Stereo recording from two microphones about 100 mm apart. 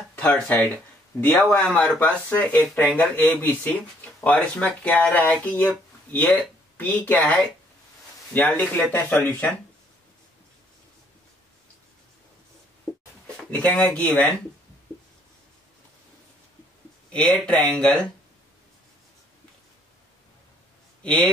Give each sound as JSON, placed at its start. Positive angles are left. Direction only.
{"t": 0.2, "sound": "speech", "side_deg": 10}
{"t": 8.4, "sound": "speech", "side_deg": 15}
{"t": 13.5, "sound": "speech", "side_deg": 15}
{"t": 17.1, "sound": "speech", "side_deg": 10}